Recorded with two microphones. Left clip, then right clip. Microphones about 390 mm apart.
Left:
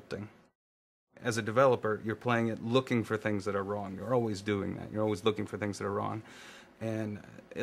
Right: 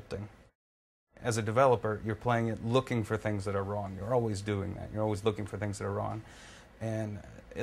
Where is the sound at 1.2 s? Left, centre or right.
Centre.